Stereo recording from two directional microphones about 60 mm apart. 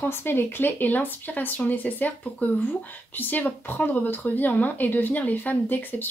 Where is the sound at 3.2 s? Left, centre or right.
Left.